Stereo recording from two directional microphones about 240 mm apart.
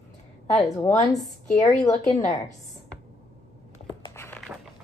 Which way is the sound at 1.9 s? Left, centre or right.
Left.